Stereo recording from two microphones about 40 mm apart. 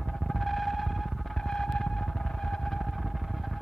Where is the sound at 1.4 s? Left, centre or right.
Centre.